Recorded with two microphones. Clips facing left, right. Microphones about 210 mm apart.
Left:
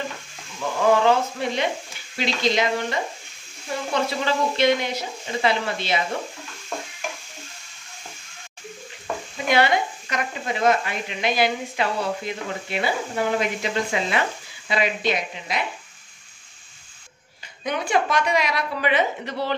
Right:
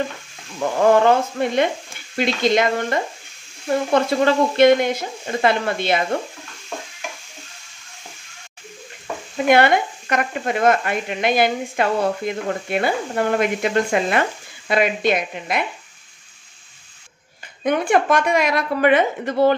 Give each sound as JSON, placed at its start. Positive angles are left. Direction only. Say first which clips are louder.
{"t": 0.6, "sound": "speech", "louder": "right 4 dB", "side_deg": -50}
{"t": 9.5, "sound": "speech", "louder": "right 5 dB", "side_deg": -55}
{"t": 17.6, "sound": "speech", "louder": "right 6 dB", "side_deg": -55}